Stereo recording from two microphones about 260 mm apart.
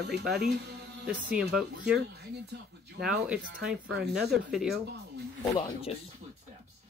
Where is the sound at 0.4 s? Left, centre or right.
Right.